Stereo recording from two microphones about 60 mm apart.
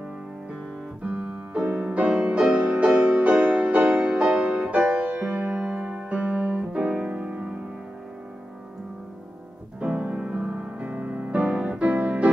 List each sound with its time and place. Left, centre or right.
2.0 s music: centre
6.7 s music: centre
9.8 s music: right